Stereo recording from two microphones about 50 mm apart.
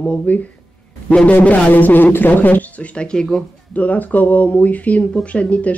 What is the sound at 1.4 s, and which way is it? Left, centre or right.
Speech, left.